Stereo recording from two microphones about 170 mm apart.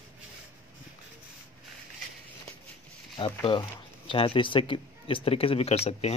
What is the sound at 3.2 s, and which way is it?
Speech, 30° left (ahead or behind).